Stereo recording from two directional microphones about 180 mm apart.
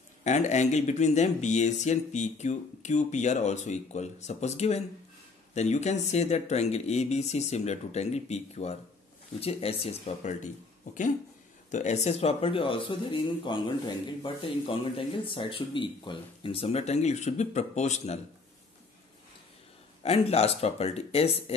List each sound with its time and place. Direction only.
0.2 s speech: 40° left (ahead or behind)
11.7 s speech: 40° left (ahead or behind)
20.0 s speech: 35° left (ahead or behind)